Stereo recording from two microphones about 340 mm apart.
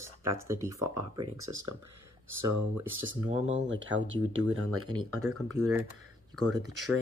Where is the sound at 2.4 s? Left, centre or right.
Right.